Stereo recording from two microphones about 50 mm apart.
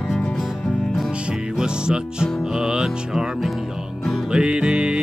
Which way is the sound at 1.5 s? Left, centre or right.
Centre.